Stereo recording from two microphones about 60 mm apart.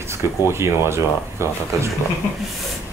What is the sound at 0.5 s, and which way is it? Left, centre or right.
Speech, right.